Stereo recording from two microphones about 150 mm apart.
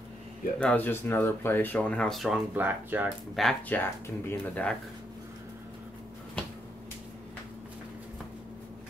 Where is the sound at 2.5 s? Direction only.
15° right (ahead or behind).